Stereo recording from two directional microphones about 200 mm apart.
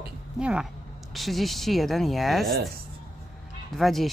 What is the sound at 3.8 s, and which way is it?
Speech, centre (ahead or behind).